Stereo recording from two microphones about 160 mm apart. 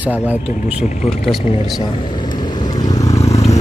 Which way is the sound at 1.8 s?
30° left (ahead or behind).